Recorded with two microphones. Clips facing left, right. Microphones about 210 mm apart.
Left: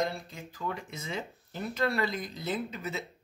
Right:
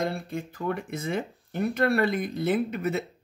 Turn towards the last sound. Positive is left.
turn(degrees=-55)  # may be behind; listen again after turning